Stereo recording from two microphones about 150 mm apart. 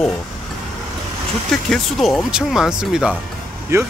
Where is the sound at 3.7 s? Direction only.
15° right (ahead or behind).